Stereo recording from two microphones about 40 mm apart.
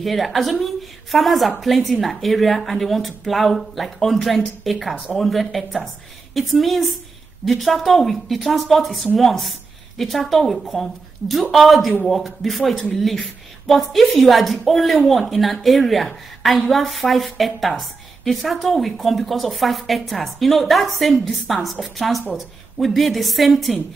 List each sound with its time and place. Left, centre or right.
0.0 s a woman's voice: centre